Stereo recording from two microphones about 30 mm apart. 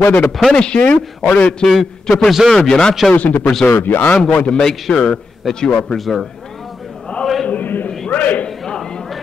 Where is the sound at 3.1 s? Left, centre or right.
Left.